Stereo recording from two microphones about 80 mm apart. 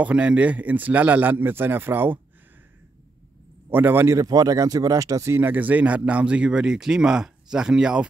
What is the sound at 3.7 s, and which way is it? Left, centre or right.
Speech, right.